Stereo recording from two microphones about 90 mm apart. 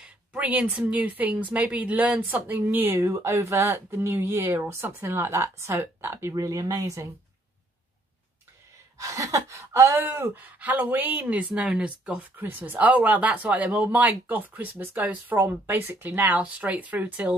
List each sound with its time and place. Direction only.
0.0 s speech: 15° right (ahead or behind)
6.3 s speech: 40° right (ahead or behind)
8.9 s speech: 40° right (ahead or behind)
9.9 s speech: 25° right (ahead or behind)